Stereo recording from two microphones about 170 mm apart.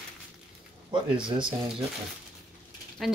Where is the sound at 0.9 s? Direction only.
30° right (ahead or behind).